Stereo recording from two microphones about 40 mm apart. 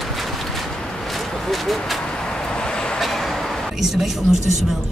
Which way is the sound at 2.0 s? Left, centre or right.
Centre.